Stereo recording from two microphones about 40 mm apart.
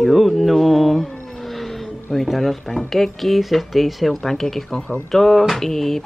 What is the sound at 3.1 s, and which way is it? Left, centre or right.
Speech, centre.